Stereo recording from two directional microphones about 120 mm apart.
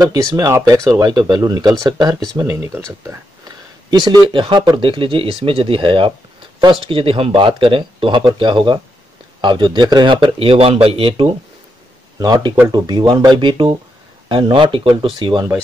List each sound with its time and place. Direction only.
0.0 s speech: 30° right (ahead or behind)
2.3 s speech: 25° right (ahead or behind)
4.0 s speech: 35° right (ahead or behind)
12.2 s speech: 35° right (ahead or behind)